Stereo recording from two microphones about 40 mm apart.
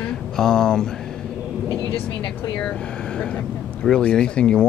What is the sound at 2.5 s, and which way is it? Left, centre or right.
Speech, left.